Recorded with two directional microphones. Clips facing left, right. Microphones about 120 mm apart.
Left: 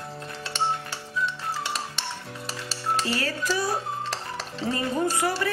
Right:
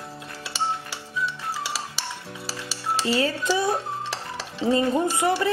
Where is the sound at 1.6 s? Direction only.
5° right (ahead or behind).